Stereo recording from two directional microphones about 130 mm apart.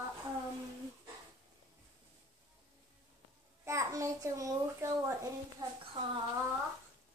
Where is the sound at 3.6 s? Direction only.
25° right (ahead or behind).